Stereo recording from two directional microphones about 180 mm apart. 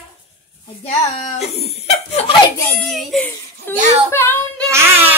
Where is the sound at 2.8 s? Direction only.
Centre (ahead or behind).